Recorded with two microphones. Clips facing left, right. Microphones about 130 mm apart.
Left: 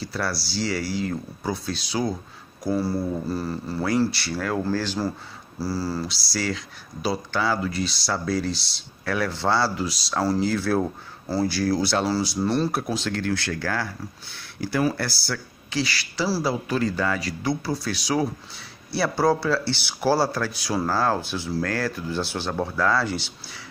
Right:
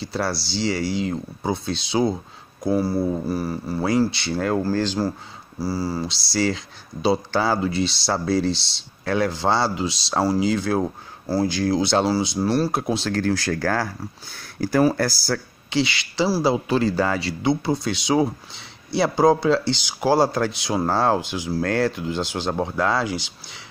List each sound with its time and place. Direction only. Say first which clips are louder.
0.0 s speech: right 3 dB; 25° right (ahead or behind)
2.7 s speech: right 3 dB; 15° right (ahead or behind)
10.2 s speech: right 2 dB; 15° right (ahead or behind)
12.4 s speech: right 2 dB; 10° right (ahead or behind)
12.7 s speech: right 3 dB; 25° right (ahead or behind)
15.7 s speech: right 4 dB; 20° right (ahead or behind)